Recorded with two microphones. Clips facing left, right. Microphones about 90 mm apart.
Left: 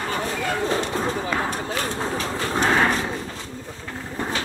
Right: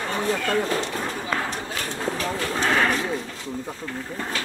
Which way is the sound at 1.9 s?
25° left (ahead or behind).